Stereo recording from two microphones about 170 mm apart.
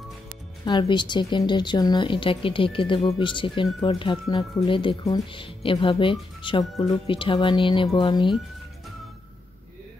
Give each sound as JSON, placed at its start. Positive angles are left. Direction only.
{"t": 0.7, "sound": "speech", "side_deg": 25}